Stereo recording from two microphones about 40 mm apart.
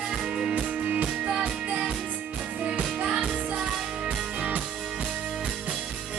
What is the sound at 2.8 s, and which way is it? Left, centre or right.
Music, centre.